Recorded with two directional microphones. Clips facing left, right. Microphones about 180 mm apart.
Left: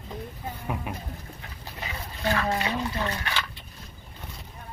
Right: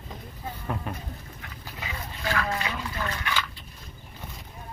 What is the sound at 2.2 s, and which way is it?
Speech, 35° left (ahead or behind).